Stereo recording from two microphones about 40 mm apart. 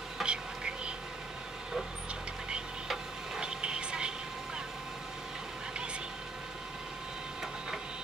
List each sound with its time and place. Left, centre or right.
0.2 s insect: right
3.3 s vehicle: right